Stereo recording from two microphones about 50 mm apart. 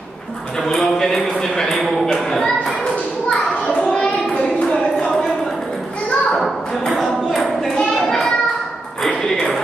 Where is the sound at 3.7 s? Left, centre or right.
Centre.